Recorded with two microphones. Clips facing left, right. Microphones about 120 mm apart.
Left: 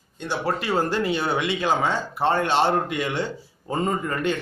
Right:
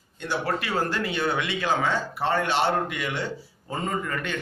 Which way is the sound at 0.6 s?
25° left (ahead or behind).